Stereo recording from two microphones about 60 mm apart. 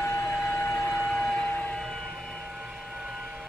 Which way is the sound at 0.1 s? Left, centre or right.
Left.